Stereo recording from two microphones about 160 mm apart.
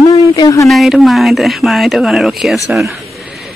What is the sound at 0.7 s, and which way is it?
A woman's voice, centre (ahead or behind).